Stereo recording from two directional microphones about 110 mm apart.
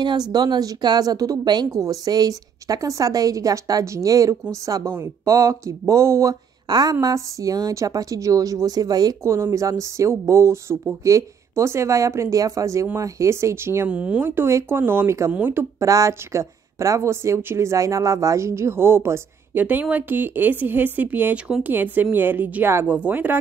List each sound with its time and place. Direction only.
0.0 s a woman's voice: 40° right (ahead or behind); by 13.8 s 25° right (ahead or behind)
13.8 s a woman's voice: 10° right (ahead or behind)
15.8 s a woman's voice: 30° right (ahead or behind)